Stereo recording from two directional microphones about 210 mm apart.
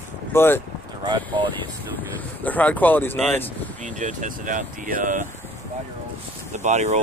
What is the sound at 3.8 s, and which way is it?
Speech, 35° right (ahead or behind).